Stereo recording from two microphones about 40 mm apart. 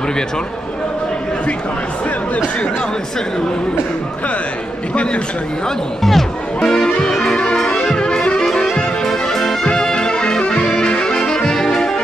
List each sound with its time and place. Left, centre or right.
6.0 s music: centre
7.8 s brass instrument: centre
8.7 s music: centre
9.7 s music: left
10.6 s saxophone: centre